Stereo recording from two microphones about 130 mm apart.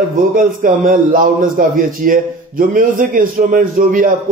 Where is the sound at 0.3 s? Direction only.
90° right.